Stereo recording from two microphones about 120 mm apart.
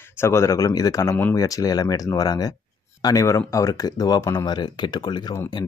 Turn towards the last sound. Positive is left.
turn(degrees=40)  # may be behind; listen again after turning